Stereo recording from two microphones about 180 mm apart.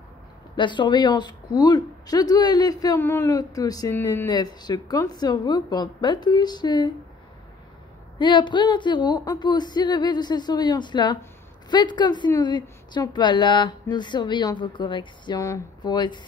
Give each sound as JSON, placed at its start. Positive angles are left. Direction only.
{"t": 0.6, "sound": "a woman's voice", "side_deg": 25}
{"t": 8.2, "sound": "a woman's voice", "side_deg": 25}